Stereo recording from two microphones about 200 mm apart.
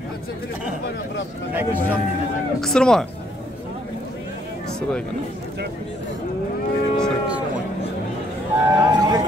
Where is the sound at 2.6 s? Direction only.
5° left (ahead or behind).